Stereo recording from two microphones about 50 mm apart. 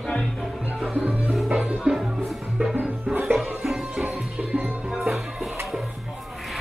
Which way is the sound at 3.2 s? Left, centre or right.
Centre.